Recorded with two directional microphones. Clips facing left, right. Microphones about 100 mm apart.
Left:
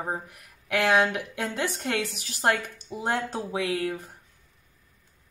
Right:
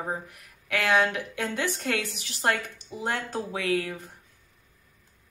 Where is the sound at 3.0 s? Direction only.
25° left (ahead or behind).